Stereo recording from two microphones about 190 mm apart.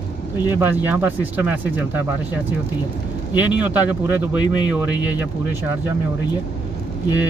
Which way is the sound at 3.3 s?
10° right (ahead or behind).